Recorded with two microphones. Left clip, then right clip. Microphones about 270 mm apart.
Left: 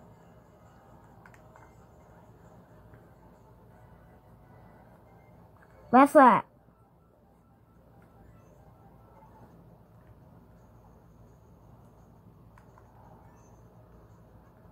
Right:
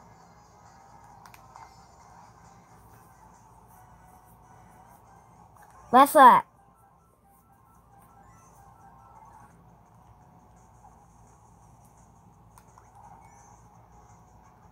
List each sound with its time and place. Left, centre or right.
5.9 s speech: right